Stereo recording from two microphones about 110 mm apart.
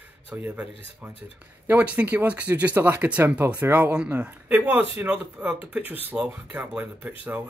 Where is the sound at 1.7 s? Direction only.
15° right (ahead or behind).